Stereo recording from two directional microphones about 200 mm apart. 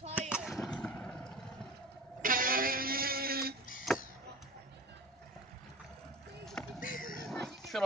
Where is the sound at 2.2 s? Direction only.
45° right (ahead or behind).